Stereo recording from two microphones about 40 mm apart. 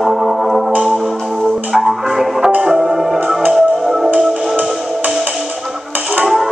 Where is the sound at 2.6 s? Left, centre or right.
Right.